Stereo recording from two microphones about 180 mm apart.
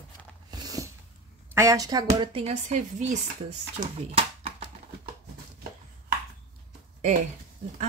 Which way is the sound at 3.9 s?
35° right (ahead or behind).